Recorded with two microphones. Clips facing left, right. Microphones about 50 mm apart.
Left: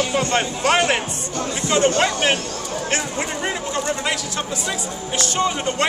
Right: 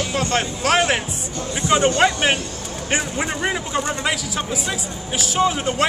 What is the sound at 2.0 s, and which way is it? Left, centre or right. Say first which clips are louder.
Speech: right 1 dB; centre.